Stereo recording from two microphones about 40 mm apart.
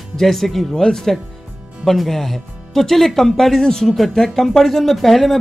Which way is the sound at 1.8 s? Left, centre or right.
Centre.